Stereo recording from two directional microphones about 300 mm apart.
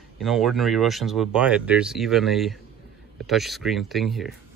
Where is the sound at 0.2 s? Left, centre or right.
Centre.